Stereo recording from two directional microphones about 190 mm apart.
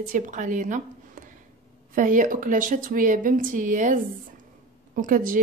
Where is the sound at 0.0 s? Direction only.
40° right (ahead or behind).